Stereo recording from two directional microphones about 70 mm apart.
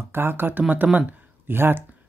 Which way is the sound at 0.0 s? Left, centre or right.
Right.